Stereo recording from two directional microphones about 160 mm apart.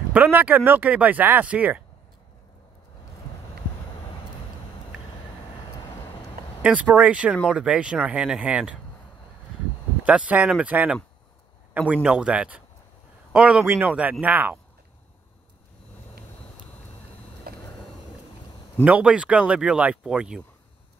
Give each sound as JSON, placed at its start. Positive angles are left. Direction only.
{"t": 0.1, "sound": "speech", "side_deg": -10}
{"t": 6.6, "sound": "speech", "side_deg": -10}
{"t": 10.0, "sound": "speech", "side_deg": -10}
{"t": 17.5, "sound": "vehicle", "side_deg": -70}
{"t": 18.9, "sound": "speech", "side_deg": -10}